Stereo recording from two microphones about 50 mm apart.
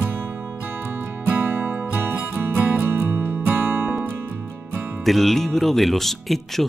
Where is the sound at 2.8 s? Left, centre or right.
Right.